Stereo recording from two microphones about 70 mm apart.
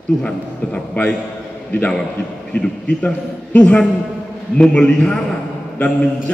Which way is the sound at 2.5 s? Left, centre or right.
Centre.